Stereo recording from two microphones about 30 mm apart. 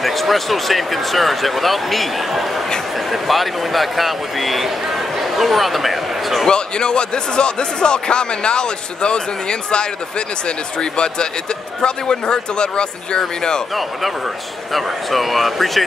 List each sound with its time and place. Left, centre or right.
0.0 s speech: centre
6.5 s speech: left
14.7 s speech: centre